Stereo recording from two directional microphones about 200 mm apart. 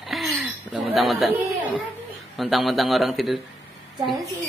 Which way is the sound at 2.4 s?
Centre (ahead or behind).